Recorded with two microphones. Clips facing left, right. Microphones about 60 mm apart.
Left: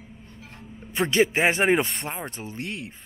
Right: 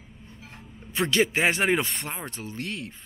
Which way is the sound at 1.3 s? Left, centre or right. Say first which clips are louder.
Left 2 dB; left.